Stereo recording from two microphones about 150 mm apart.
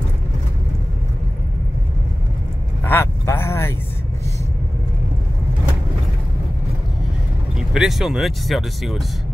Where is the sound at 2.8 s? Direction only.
15° left (ahead or behind).